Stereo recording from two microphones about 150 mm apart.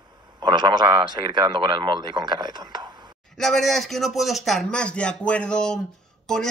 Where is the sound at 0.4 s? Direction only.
30° right (ahead or behind).